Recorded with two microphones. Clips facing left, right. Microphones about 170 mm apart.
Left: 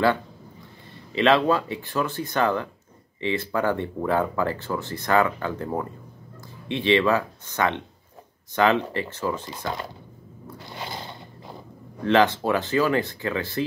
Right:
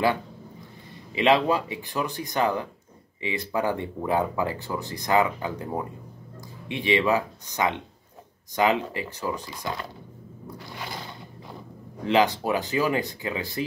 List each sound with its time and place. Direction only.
1.1 s speech: 15° right (ahead or behind)
6.7 s speech: 15° right (ahead or behind)
10.6 s a sound: 25° left (ahead or behind)
12.0 s speech: 15° right (ahead or behind)